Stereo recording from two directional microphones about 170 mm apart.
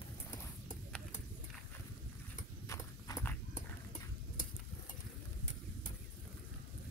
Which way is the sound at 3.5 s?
45° left (ahead or behind).